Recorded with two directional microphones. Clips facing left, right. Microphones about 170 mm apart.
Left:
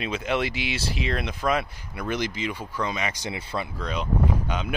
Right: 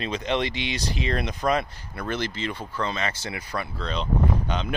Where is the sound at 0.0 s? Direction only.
5° left (ahead or behind).